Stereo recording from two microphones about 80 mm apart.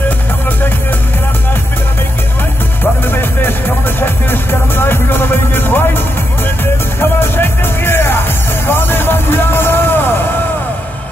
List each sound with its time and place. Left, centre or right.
2.8 s music: left